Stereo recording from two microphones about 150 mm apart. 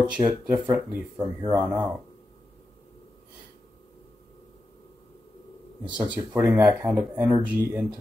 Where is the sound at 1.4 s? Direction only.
30° right (ahead or behind).